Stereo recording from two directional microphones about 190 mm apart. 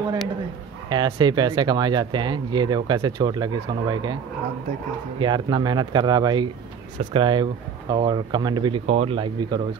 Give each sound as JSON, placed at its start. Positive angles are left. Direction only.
{"t": 0.8, "sound": "speech", "side_deg": -25}
{"t": 5.2, "sound": "speech", "side_deg": -25}